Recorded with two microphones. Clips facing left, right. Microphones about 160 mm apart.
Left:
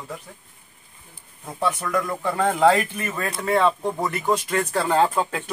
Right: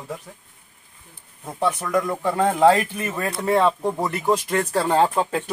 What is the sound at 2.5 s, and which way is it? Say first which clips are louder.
Speech: right 1 dB; 5° right (ahead or behind).